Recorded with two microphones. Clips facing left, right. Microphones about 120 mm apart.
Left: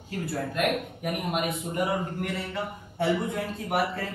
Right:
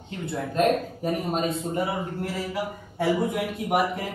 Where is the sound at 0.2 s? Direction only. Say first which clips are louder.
Right 4 dB; 25° right (ahead or behind).